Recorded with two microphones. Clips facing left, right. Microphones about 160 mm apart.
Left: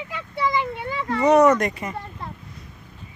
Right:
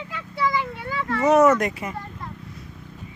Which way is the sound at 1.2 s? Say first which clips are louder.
Left 1 dB; 5° right (ahead or behind).